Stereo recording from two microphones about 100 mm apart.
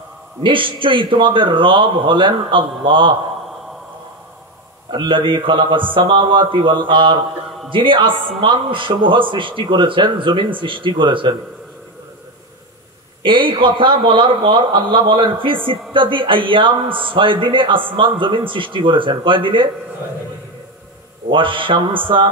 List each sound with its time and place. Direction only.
0.4 s a man's voice: 60° right (ahead or behind)
4.9 s a man's voice: 55° right (ahead or behind)
13.2 s a man's voice: 55° right (ahead or behind)
21.3 s a man's voice: 60° right (ahead or behind)